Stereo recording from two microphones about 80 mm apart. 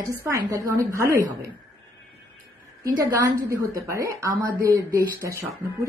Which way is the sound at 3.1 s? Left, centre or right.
Right.